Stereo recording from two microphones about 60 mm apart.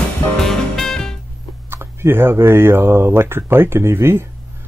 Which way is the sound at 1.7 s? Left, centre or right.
Right.